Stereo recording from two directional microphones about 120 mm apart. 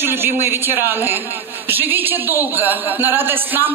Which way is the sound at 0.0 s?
20° right (ahead or behind).